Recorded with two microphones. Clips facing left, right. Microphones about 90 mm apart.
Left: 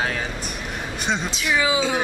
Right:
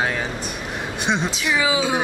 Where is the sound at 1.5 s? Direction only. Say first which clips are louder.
Even; 5° right (ahead or behind).